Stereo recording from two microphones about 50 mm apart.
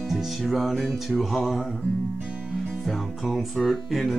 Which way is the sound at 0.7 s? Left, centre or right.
Centre.